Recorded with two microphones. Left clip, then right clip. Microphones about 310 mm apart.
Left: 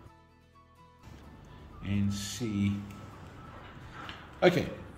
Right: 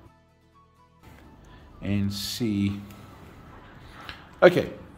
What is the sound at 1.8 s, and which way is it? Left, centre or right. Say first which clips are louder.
Speech: right 6 dB; centre.